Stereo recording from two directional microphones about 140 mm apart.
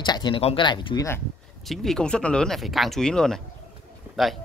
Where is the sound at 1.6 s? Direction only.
Centre (ahead or behind).